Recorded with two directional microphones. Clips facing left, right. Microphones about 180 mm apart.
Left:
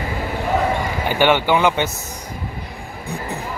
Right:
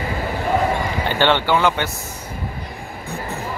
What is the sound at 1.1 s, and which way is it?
Speech, 10° left (ahead or behind).